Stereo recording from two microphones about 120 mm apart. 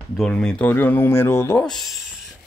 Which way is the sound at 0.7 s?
20° left (ahead or behind).